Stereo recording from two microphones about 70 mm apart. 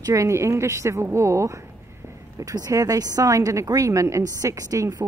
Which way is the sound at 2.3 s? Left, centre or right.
Right.